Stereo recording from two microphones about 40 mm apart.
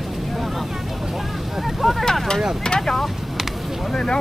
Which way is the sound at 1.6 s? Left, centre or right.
Centre.